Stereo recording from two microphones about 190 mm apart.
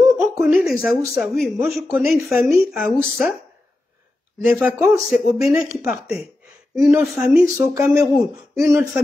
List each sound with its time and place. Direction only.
0.4 s speech: 5° right (ahead or behind)
4.4 s speech: 10° right (ahead or behind)